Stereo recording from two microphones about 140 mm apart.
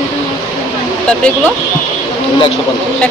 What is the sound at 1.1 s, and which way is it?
Speech, 10° left (ahead or behind).